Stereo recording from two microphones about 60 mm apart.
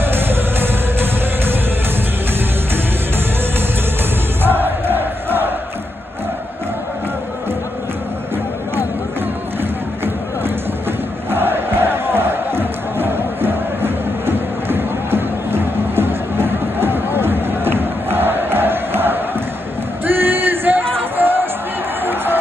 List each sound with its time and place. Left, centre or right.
0.0 s music: right
4.4 s crowd: right
9.6 s music: right
20.1 s a sound: right
21.2 s music: right
22.0 s a sound: right